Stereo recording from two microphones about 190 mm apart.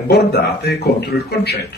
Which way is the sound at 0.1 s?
55° left (ahead or behind).